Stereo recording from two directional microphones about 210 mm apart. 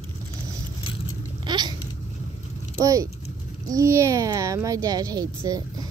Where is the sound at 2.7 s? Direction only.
15° right (ahead or behind).